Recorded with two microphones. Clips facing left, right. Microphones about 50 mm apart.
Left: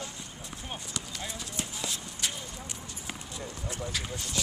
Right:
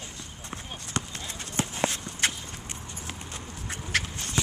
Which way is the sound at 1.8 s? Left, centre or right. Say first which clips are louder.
Right 10 dB; right.